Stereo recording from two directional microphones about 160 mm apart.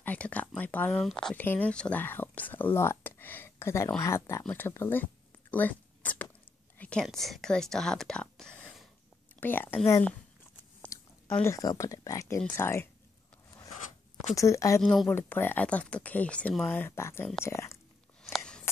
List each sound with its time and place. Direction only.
0.0 s speech: 10° left (ahead or behind)
5.5 s a sound: 10° left (ahead or behind)
6.8 s speech: 5° left (ahead or behind)
10.9 s chewing: 20° left (ahead or behind)
11.3 s speech: 20° left (ahead or behind)
14.3 s speech: 20° left (ahead or behind)
14.8 s speech: 5° left (ahead or behind)
18.3 s a sound: 5° left (ahead or behind)